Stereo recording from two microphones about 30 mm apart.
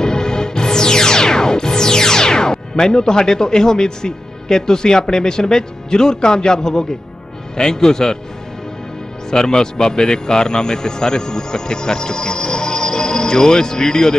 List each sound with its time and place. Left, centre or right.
0.0 s music: left
7.5 s speech: left
9.5 s speech: left